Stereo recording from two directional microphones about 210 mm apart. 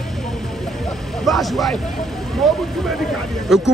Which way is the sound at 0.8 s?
Centre (ahead or behind).